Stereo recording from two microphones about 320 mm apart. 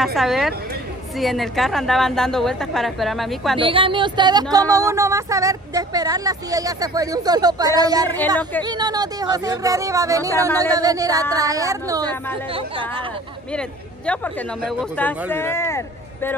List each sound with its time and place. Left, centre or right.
0.0 s a woman's voice: centre
3.5 s speech: centre
13.5 s speech: centre